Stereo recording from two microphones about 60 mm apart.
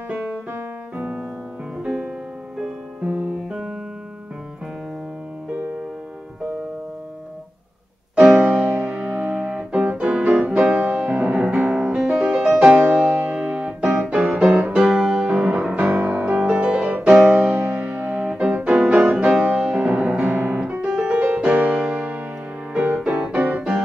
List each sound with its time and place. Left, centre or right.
0.1 s music: centre
0.9 s piano: right
1.8 s music: centre
8.2 s music: centre
9.8 s piano: right
10.6 s music: centre
12.7 s keyboard: right
14.6 s music: centre
16.0 s music: right
16.3 s music: centre
20.3 s piano: right
22.7 s music: centre